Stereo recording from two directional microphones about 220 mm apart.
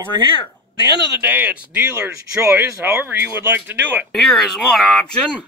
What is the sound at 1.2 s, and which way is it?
Speech, 10° right (ahead or behind).